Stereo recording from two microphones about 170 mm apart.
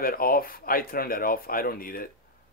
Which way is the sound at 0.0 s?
60° left (ahead or behind).